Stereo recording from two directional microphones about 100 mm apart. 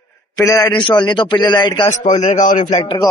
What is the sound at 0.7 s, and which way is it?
A man's voice, 55° left (ahead or behind).